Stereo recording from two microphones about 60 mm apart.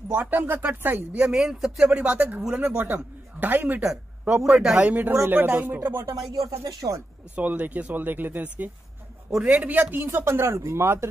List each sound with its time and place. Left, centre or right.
0.1 s speech: right
1.3 s a man's voice: centre
1.9 s a man's voice: right
4.4 s a man's voice: centre
4.8 s a man's voice: right
6.3 s speech: right
7.3 s a man's voice: right
9.3 s a man's voice: centre; by 11.1 s right